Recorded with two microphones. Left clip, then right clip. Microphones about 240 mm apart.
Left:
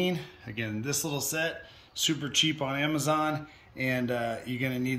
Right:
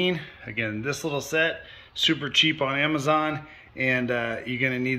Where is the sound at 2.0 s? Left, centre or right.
Centre.